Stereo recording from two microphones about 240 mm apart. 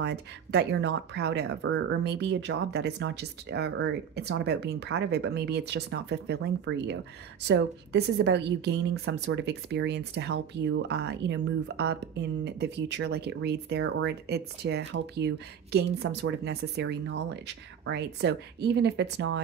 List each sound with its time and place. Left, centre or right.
0.0 s a woman's voice: right